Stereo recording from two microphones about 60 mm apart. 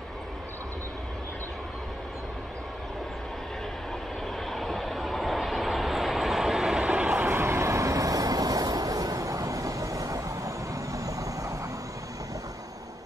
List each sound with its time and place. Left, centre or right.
4.5 s vehicle: centre; by 7.2 s right
7.2 s vehicle: right